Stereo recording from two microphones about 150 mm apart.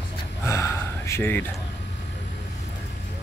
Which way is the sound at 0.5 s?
20° left (ahead or behind).